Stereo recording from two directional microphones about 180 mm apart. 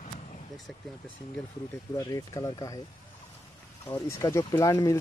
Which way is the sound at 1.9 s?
20° left (ahead or behind).